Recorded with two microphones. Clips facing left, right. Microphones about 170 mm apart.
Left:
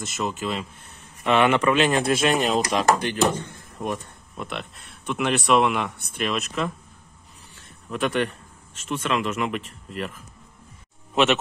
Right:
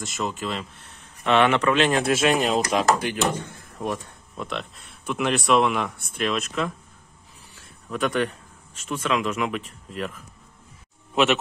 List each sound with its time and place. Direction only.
0.0 s speech: centre (ahead or behind)
7.9 s speech: centre (ahead or behind)